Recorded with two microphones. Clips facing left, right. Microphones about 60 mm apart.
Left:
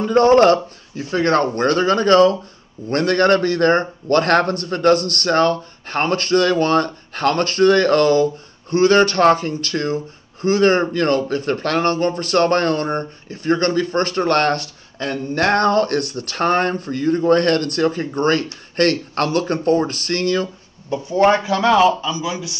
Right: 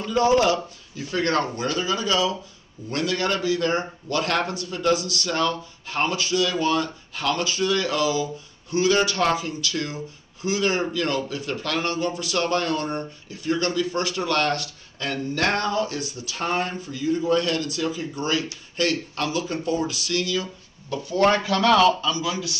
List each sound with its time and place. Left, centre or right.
0.0 s speech: left
0.9 s speech: left
1.4 s speech: left
20.9 s speech: left